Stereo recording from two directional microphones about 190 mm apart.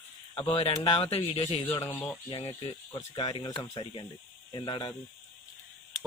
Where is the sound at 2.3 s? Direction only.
30° left (ahead or behind).